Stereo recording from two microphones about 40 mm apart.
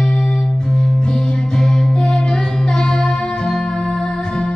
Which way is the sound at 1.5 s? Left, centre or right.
Centre.